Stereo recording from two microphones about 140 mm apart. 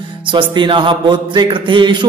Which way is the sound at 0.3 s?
35° right (ahead or behind).